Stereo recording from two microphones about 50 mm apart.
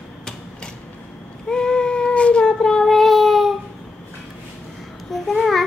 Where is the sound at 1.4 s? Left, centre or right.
Centre.